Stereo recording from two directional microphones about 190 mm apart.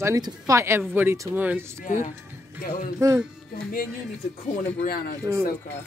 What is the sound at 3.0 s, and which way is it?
Speech, 15° right (ahead or behind).